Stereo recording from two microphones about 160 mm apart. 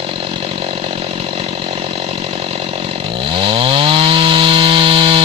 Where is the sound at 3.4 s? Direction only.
35° right (ahead or behind).